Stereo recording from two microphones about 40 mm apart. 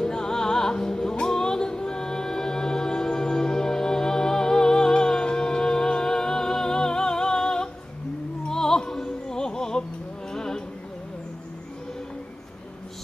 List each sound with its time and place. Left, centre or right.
0.0 s music: centre